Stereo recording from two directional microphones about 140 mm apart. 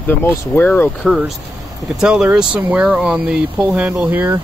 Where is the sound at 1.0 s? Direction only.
Centre (ahead or behind).